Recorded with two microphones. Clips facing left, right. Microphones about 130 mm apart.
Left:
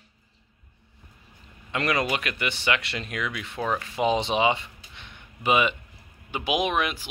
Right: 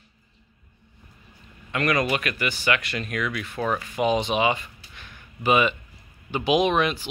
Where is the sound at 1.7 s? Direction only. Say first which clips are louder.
Right 2 dB; 25° left (ahead or behind).